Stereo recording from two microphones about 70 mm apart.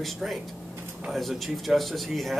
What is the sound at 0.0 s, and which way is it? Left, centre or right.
Speech, centre.